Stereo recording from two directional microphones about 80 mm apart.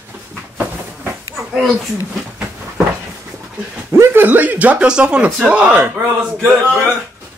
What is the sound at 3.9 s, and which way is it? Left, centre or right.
A man's voice, right.